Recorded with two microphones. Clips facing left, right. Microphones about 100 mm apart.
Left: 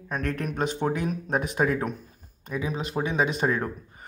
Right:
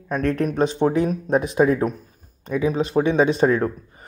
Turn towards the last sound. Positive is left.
turn(degrees=-35)  # may be behind; listen again after turning